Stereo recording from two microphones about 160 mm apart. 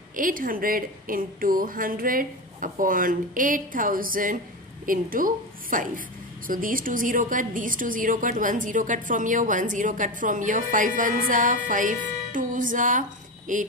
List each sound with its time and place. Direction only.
0.1 s a woman's voice: 60° right (ahead or behind)